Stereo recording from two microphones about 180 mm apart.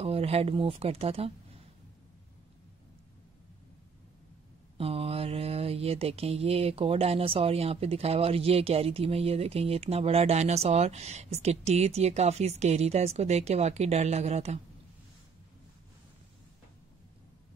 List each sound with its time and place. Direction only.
0.0 s mantra: 35° right (ahead or behind)
4.7 s mantra: 30° right (ahead or behind)